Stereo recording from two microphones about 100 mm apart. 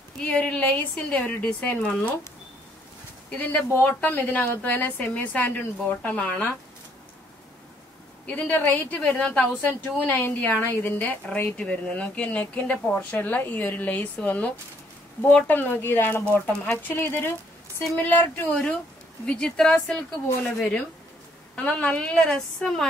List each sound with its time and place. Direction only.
0.2 s a woman's voice: 10° left (ahead or behind)
3.3 s a woman's voice: 20° left (ahead or behind)
8.3 s a woman's voice: 15° left (ahead or behind)